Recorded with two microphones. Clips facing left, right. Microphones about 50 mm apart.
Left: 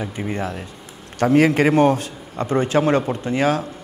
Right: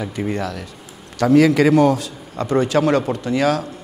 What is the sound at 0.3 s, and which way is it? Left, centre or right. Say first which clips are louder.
A man's voice: right 2 dB; left.